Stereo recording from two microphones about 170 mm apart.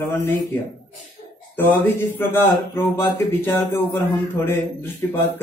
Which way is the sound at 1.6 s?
10° left (ahead or behind).